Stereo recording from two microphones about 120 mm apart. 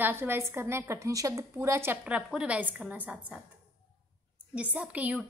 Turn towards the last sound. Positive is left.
turn(degrees=-10)  # may be behind; listen again after turning